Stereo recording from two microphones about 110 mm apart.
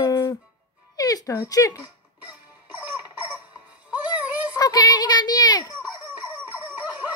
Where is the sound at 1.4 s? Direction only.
35° left (ahead or behind).